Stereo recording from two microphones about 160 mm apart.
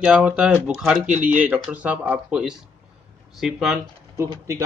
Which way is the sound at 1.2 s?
55° right (ahead or behind).